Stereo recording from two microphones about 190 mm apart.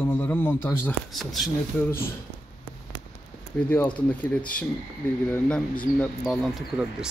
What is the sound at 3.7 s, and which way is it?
Speech, 10° left (ahead or behind).